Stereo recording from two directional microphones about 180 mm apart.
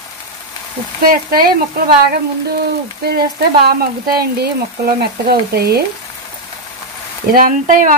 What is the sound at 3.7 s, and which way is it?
Speech, 60° right (ahead or behind).